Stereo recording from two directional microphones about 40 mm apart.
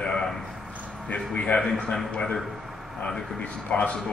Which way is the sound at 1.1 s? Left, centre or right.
Left.